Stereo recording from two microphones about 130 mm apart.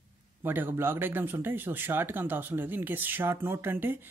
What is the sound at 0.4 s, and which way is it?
Speech, 15° right (ahead or behind).